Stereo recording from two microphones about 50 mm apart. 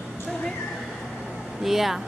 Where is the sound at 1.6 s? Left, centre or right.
Centre.